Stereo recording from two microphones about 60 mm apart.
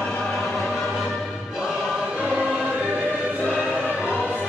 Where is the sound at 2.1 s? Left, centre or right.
Centre.